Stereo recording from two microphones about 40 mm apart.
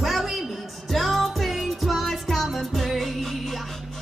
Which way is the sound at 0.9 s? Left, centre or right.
Centre.